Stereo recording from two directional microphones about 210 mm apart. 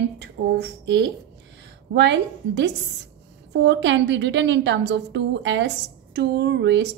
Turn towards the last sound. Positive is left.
turn(degrees=-55)  # may be behind; listen again after turning